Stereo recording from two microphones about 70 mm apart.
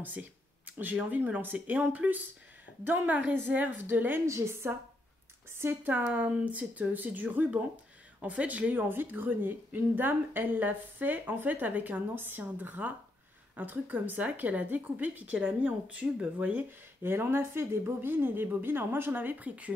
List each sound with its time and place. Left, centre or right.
0.0 s speech: right
4.3 s a woman's voice: right
6.0 s speech: centre